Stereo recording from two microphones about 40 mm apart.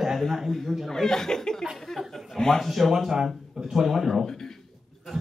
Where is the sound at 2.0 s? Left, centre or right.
Centre.